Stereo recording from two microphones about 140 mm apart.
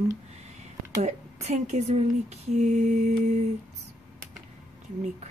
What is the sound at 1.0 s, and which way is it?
Speech, 55° right (ahead or behind).